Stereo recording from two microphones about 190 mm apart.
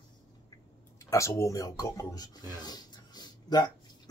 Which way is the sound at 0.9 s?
15° left (ahead or behind).